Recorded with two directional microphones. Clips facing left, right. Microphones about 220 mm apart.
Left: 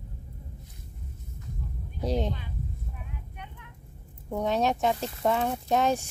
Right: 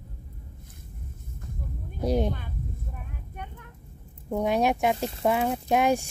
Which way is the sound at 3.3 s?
45° right (ahead or behind).